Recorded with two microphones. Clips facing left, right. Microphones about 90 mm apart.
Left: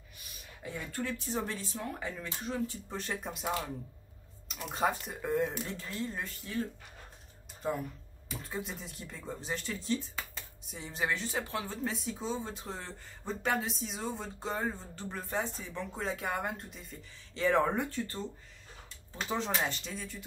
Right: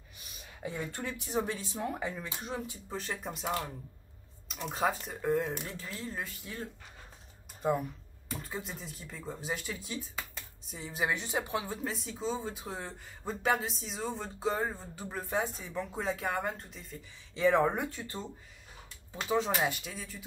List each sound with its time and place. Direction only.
0.6 s speech: 20° right (ahead or behind)
2.9 s speech: centre (ahead or behind)
8.3 s speech: centre (ahead or behind)
11.1 s speech: 15° right (ahead or behind)
11.9 s speech: centre (ahead or behind); by 18.2 s 15° right (ahead or behind)
19.2 s speech: 5° right (ahead or behind)